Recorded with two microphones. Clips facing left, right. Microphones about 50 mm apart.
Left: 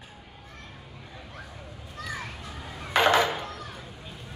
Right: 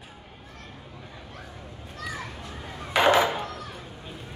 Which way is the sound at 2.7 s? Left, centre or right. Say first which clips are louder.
Right 1 dB; right.